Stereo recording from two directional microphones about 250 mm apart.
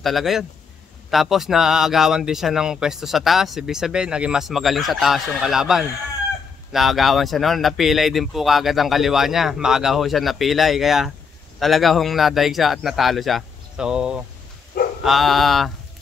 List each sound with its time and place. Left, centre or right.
0.0 s speech: centre
14.7 s dog: left
15.0 s speech: centre